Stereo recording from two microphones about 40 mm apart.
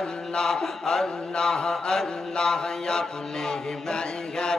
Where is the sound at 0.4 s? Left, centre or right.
Centre.